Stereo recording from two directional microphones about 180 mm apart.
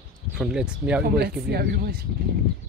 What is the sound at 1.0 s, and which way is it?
Speech, 60° right (ahead or behind).